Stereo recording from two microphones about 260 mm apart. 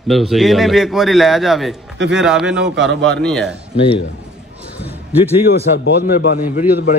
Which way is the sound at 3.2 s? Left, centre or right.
Centre.